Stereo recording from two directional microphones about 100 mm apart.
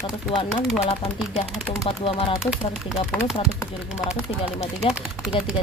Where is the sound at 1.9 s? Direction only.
65° left (ahead or behind).